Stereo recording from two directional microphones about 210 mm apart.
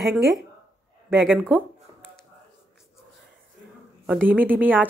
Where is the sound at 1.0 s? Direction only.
10° right (ahead or behind).